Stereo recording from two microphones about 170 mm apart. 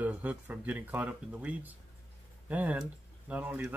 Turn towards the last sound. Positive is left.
turn(degrees=-10)  # may be behind; listen again after turning